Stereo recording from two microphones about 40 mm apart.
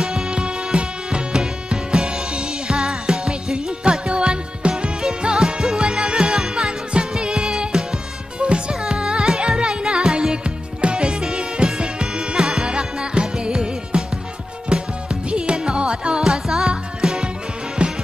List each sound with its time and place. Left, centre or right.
0.0 s music: centre
4.1 s music: right
16.3 s music: centre; by 17.9 s right